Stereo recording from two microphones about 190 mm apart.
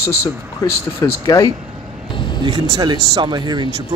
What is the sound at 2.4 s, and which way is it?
Speech, 20° right (ahead or behind).